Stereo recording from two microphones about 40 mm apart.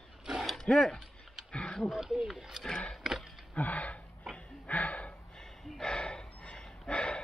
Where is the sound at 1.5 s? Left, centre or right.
Left.